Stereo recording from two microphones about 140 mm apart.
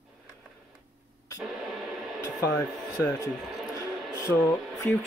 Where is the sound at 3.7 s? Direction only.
25° left (ahead or behind).